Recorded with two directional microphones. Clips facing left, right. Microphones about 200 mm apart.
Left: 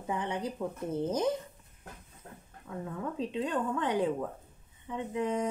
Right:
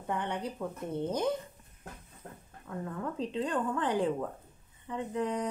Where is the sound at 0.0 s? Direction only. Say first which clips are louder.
Left 1 dB; centre (ahead or behind).